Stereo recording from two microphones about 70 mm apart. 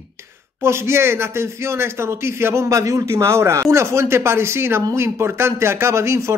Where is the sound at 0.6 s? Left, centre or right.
Right.